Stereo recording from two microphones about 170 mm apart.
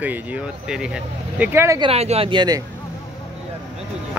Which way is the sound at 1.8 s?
35° right (ahead or behind).